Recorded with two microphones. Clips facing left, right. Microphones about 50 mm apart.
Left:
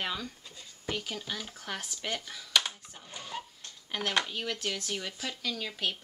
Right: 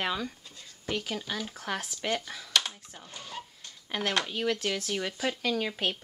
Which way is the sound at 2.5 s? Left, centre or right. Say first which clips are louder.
Even; centre.